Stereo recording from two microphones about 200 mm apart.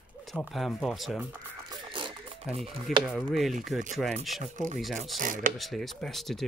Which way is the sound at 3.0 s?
Centre (ahead or behind).